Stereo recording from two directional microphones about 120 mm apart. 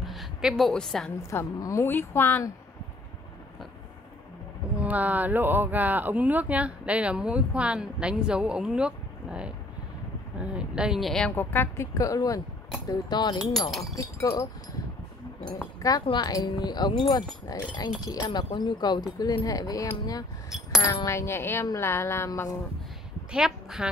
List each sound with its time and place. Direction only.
0.0 s a woman's voice: centre (ahead or behind)
1.3 s speech: 25° left (ahead or behind)
4.7 s speech: 15° right (ahead or behind); by 11.3 s 5° left (ahead or behind)
11.3 s speech: 20° left (ahead or behind)
13.7 s speech: centre (ahead or behind)
15.8 s speech: 35° left (ahead or behind)
20.4 s coin: 5° right (ahead or behind)
20.8 s speech: 25° left (ahead or behind)
23.3 s a woman's voice: 5° right (ahead or behind)